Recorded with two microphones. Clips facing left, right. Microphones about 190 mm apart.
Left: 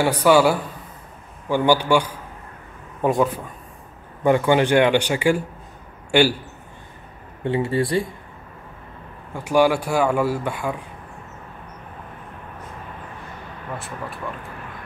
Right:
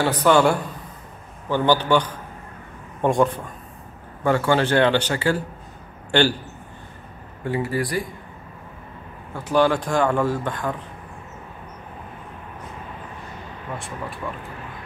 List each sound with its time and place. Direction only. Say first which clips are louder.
0.0 s a man's voice: left 1 dB; 10° left (ahead or behind)
4.2 s a man's voice: left 3 dB; 15° left (ahead or behind)
7.4 s speech: left 3 dB; 25° left (ahead or behind)
9.3 s a man's voice: left 1 dB; 10° left (ahead or behind)